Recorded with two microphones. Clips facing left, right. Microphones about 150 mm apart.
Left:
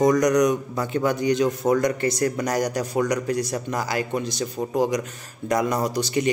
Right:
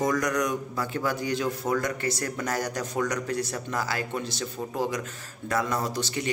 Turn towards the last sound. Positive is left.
turn(degrees=15)  # may be behind; listen again after turning